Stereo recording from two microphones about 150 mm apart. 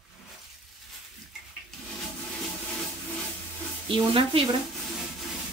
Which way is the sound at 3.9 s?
35° right (ahead or behind).